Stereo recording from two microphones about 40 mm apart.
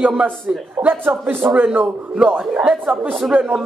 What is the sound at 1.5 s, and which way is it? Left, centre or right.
Speech, right.